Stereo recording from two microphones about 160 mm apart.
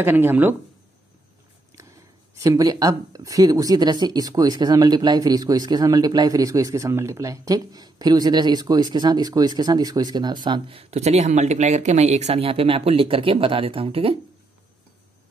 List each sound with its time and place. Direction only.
0.0 s speech: 10° right (ahead or behind)
1.8 s a sound: 20° right (ahead or behind)
2.3 s speech: 20° right (ahead or behind)